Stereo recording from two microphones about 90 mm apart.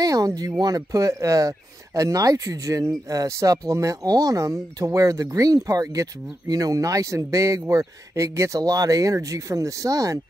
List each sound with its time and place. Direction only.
0.0 s speech: 40° right (ahead or behind)